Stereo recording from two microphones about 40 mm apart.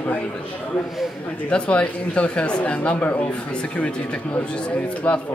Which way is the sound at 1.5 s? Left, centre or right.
Left.